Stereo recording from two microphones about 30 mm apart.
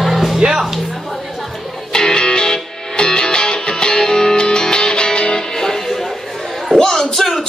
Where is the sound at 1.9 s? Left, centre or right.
Left.